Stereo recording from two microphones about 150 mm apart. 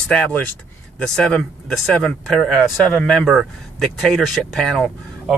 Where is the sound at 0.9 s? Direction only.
5° left (ahead or behind).